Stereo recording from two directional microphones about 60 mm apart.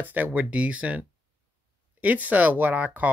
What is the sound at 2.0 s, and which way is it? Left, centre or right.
Speech, right.